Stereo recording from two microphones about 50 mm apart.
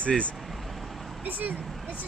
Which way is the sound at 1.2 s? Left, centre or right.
Right.